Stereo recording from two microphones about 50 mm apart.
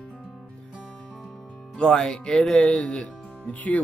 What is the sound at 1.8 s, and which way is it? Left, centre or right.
Speech, centre.